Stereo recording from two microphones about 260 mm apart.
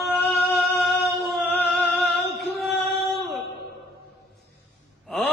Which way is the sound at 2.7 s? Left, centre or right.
Left.